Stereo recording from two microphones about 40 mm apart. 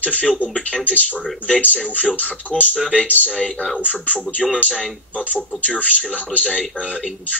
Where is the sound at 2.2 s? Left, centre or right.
Left.